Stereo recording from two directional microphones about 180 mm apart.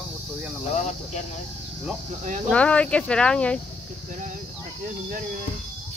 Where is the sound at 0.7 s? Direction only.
40° left (ahead or behind).